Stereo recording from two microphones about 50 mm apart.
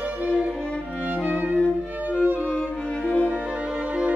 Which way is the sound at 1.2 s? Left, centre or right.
Right.